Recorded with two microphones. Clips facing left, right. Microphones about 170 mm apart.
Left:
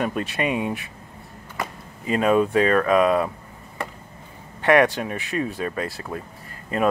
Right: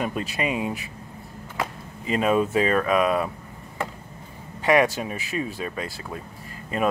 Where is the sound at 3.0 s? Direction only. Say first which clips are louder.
Left 3 dB; 25° left (ahead or behind).